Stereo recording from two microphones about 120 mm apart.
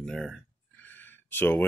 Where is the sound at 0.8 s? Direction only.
15° left (ahead or behind).